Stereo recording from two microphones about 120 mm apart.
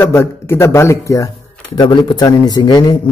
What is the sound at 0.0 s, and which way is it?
Speech, 20° left (ahead or behind).